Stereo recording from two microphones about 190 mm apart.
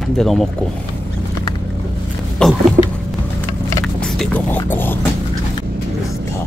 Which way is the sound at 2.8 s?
35° right (ahead or behind).